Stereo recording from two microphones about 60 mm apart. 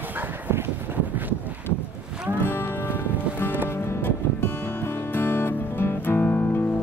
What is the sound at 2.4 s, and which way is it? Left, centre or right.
Music, left.